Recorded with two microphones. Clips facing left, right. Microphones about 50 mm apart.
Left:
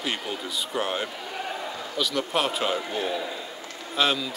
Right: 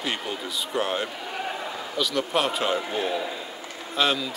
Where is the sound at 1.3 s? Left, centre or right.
Centre.